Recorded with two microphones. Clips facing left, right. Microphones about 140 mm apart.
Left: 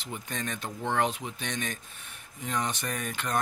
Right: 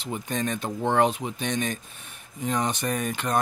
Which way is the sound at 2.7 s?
20° right (ahead or behind).